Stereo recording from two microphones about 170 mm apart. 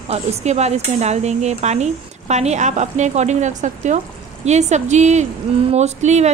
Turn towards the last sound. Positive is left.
turn(degrees=-40)  # may be behind; listen again after turning